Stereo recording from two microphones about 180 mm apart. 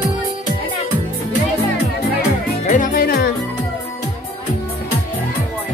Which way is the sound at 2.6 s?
50° left (ahead or behind).